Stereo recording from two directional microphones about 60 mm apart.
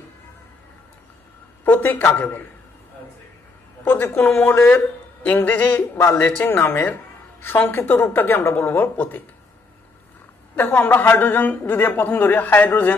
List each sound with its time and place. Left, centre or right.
1.6 s a sound: left
2.1 s a man's voice: left
3.8 s a man's voice: left
4.2 s a woman's voice: left
8.6 s a woman's voice: left
10.5 s a woman's voice: left